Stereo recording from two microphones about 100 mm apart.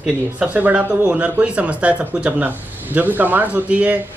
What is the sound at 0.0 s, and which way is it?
Speech, 10° right (ahead or behind).